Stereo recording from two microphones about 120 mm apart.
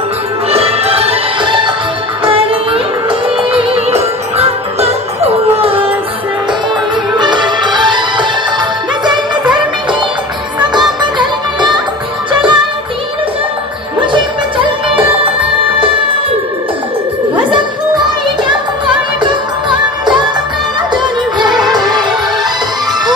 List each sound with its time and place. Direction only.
0.5 s music: 55° right (ahead or behind)
7.2 s music: 40° right (ahead or behind)
11.0 s music: 40° right (ahead or behind)
18.5 s music: 40° right (ahead or behind)